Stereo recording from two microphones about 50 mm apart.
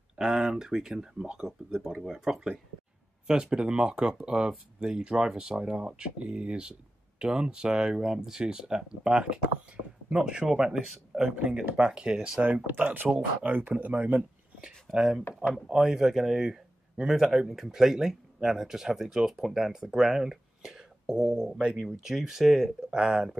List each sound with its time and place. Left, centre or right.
0.1 s speech: centre
11.1 s a sound: centre
11.7 s speech: centre
12.4 s speech: right
13.1 s speech: right
15.0 s speech: centre
21.7 s speech: centre
22.9 s speech: centre